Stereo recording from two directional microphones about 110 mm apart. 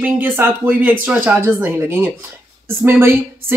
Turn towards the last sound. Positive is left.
turn(degrees=-20)  # may be behind; listen again after turning